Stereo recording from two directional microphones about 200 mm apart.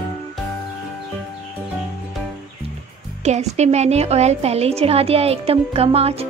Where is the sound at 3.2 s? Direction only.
35° right (ahead or behind).